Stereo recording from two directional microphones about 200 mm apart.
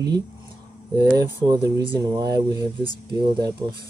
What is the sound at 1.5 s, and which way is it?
Speech, 20° right (ahead or behind).